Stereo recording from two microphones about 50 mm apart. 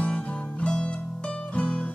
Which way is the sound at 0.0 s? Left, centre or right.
Left.